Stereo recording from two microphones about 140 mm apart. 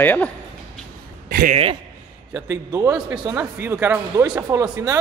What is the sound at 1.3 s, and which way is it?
Speech, 90° right.